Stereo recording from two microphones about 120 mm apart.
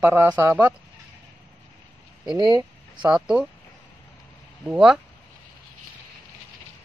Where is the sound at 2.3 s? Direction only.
30° right (ahead or behind).